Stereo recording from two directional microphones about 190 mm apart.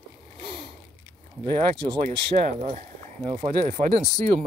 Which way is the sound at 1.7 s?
25° right (ahead or behind).